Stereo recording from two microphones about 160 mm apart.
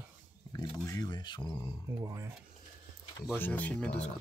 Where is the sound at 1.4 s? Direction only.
15° left (ahead or behind).